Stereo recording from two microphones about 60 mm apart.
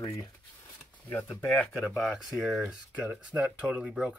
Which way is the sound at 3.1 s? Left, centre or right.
Right.